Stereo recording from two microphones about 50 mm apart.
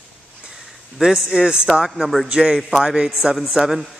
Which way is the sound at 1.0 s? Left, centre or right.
Centre.